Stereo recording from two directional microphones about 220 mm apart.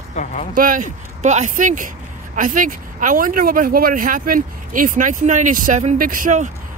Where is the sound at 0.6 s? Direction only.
35° right (ahead or behind).